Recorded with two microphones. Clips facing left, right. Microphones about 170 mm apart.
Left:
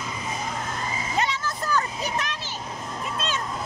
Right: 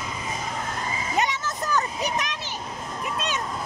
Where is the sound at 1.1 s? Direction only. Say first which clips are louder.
Right 1 dB; 20° right (ahead or behind).